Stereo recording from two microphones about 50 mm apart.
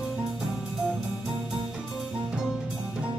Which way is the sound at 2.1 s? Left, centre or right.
Centre.